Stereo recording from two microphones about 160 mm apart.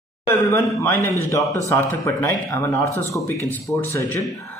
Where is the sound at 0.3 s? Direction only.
15° left (ahead or behind).